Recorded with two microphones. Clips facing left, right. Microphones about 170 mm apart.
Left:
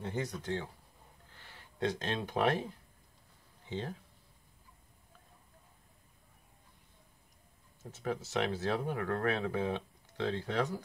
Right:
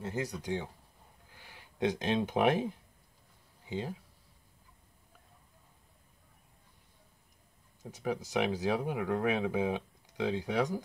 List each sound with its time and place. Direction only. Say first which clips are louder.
0.0 s speech: right 1 dB; 5° right (ahead or behind)
7.8 s speech: right 2 dB; 15° right (ahead or behind)